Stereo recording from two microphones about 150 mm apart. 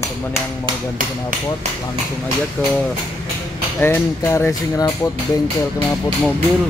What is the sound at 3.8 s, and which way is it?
Speech, 15° left (ahead or behind).